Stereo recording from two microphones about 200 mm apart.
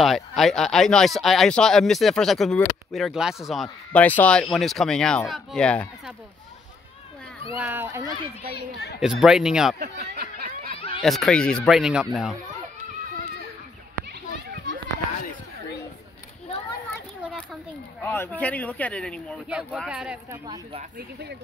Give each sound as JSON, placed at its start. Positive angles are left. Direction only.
{"t": 0.0, "sound": "speech", "side_deg": 0}
{"t": 7.5, "sound": "speech", "side_deg": -10}
{"t": 8.5, "sound": "a child's voice", "side_deg": 60}
{"t": 9.0, "sound": "speech", "side_deg": -5}
{"t": 9.8, "sound": "a sound", "side_deg": -50}
{"t": 11.0, "sound": "speech", "side_deg": 0}
{"t": 14.0, "sound": "children playing", "side_deg": -55}
{"t": 17.2, "sound": "children playing", "side_deg": 0}
{"t": 18.0, "sound": "speech", "side_deg": 10}
{"t": 20.4, "sound": "speech", "side_deg": -20}